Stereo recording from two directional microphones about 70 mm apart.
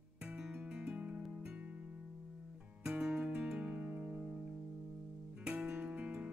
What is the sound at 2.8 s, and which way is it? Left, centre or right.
Music, centre.